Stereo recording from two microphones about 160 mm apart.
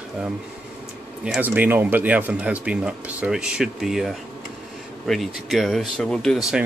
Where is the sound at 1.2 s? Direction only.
10° right (ahead or behind).